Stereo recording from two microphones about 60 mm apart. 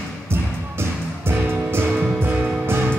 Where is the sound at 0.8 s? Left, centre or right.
Right.